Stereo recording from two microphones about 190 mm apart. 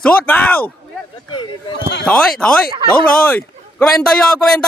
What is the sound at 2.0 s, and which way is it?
Speech, 5° left (ahead or behind).